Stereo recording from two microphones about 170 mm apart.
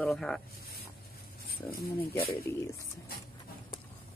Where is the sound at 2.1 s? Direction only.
65° left (ahead or behind).